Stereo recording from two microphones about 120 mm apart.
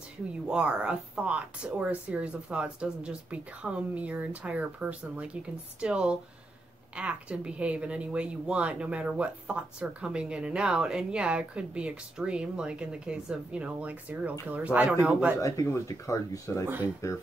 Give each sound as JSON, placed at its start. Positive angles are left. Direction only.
{"t": 0.5, "sound": "speech", "side_deg": -10}
{"t": 15.4, "sound": "speech", "side_deg": 30}